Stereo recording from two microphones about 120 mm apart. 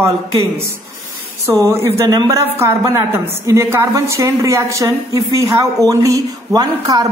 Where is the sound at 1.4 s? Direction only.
25° right (ahead or behind).